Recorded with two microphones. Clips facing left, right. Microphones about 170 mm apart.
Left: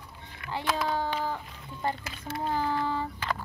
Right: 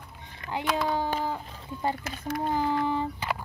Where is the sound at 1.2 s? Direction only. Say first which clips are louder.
Right 1 dB; 15° right (ahead or behind).